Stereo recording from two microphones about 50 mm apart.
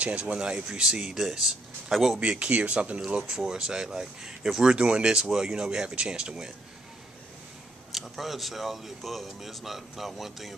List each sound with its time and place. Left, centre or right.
0.0 s speech: right
1.1 s speech: centre
2.1 s speech: right
3.3 s speech: centre
7.9 s speech: centre